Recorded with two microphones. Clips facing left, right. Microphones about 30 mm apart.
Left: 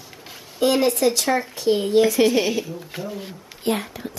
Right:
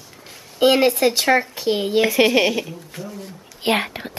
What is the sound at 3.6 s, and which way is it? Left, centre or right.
Speech, right.